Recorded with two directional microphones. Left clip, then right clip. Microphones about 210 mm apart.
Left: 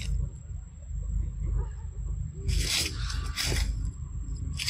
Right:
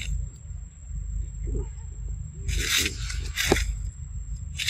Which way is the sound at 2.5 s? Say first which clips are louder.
Right 5 dB; 15° right (ahead or behind).